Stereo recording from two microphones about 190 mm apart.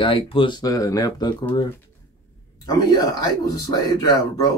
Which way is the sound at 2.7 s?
20° left (ahead or behind).